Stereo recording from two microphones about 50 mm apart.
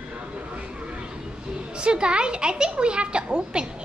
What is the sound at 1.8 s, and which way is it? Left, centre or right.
A child's voice, centre.